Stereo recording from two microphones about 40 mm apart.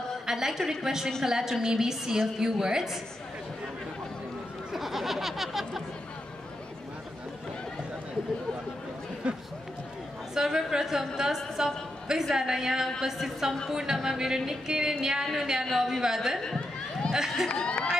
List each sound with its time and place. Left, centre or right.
0.3 s a woman's voice: centre
4.7 s a sound: centre
9.2 s speech: right
10.3 s a woman's voice: centre
17.5 s speech: left